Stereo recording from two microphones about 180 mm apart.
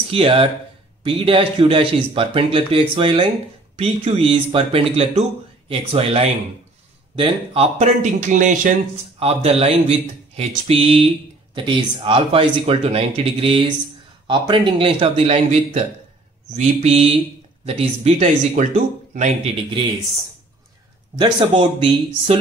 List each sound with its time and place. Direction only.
0.1 s speech: 30° right (ahead or behind)
9.2 s speech: 35° right (ahead or behind)
21.2 s speech: 25° right (ahead or behind)